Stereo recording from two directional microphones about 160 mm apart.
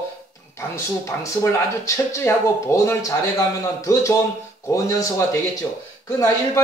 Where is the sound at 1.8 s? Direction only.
15° left (ahead or behind).